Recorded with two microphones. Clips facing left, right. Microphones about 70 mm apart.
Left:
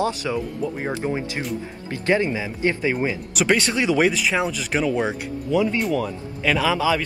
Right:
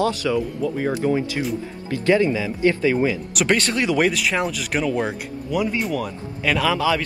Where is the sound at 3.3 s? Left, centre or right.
Centre.